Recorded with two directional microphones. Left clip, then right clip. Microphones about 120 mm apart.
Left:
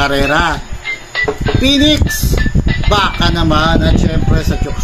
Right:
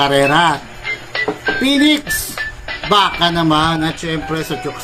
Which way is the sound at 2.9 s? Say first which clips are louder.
Right 1 dB; 5° right (ahead or behind).